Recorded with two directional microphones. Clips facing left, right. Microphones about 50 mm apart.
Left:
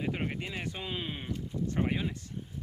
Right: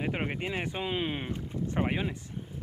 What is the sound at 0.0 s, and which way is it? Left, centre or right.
Speech, right.